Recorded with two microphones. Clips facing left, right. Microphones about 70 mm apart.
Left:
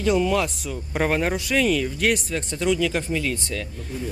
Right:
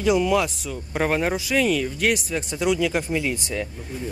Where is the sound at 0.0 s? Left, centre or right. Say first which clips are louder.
Right 1 dB; centre.